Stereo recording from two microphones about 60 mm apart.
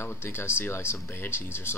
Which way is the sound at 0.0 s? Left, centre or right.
Left.